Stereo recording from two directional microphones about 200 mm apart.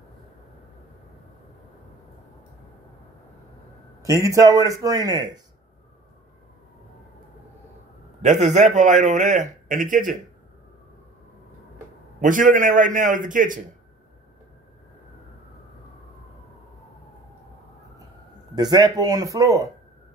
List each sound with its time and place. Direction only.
4.0 s a man's voice: 15° right (ahead or behind)
8.2 s a man's voice: 35° right (ahead or behind)
12.2 s a man's voice: 40° right (ahead or behind)
18.5 s speech: 20° right (ahead or behind)